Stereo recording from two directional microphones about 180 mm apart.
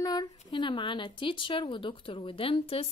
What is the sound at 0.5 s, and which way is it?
Speech, 25° left (ahead or behind).